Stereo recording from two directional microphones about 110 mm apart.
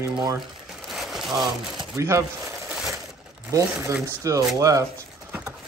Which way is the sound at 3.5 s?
30° right (ahead or behind).